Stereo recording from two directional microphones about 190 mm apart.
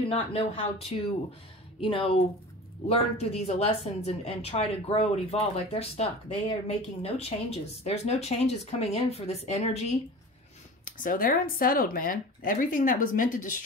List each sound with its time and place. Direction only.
0.1 s speech: 30° left (ahead or behind)
10.9 s speech: 45° left (ahead or behind)